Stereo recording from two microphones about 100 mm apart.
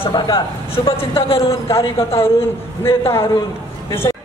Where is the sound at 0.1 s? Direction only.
55° left (ahead or behind).